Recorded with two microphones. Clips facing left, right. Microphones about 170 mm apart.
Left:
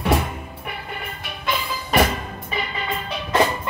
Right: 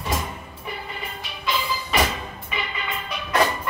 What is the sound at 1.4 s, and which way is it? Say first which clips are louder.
Music: even; 55° left (ahead or behind).